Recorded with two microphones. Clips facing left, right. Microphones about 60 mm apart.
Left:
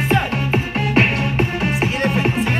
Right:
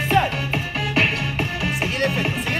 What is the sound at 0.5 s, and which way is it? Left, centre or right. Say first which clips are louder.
Music: left 5 dB; left.